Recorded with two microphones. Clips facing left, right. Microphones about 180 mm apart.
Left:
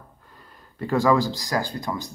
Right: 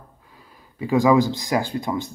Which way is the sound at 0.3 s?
5° right (ahead or behind).